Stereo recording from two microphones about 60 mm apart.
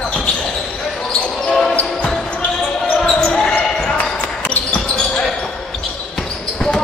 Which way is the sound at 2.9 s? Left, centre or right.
Centre.